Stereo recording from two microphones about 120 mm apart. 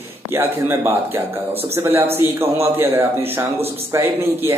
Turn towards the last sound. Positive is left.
turn(degrees=-20)  # may be behind; listen again after turning